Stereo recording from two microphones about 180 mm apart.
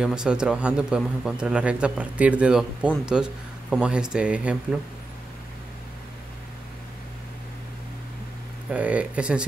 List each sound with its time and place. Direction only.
0.0 s speech: 5° right (ahead or behind)
8.6 s speech: 10° right (ahead or behind)